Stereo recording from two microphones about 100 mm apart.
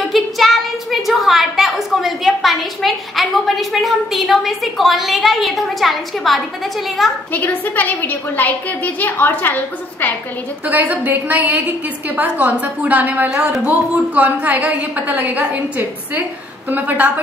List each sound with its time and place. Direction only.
0.1 s a sound: centre (ahead or behind)
3.7 s a woman's voice: centre (ahead or behind)
7.3 s a woman's voice: 15° left (ahead or behind)
10.7 s a woman's voice: 15° right (ahead or behind)